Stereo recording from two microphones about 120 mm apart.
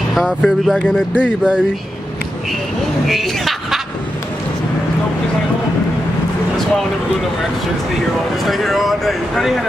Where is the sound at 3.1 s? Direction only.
Centre (ahead or behind).